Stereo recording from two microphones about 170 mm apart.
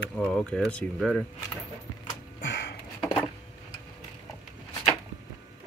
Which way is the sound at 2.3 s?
85° left.